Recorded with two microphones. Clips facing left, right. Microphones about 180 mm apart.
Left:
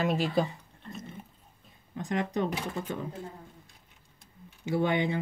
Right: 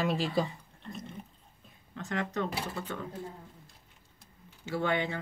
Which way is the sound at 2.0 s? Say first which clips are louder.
Left 3 dB; 15° left (ahead or behind).